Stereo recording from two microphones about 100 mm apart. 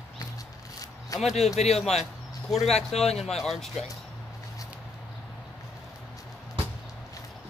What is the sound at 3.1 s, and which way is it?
Speech, 5° left (ahead or behind).